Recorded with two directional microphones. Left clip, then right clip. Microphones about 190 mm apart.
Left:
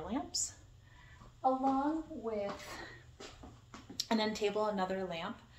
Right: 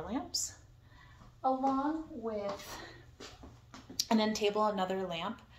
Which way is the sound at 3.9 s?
25° right (ahead or behind).